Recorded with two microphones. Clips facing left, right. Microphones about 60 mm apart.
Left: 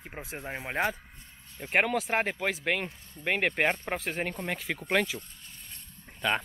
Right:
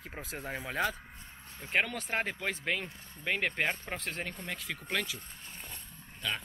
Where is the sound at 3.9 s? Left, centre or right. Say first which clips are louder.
Left 6 dB; centre.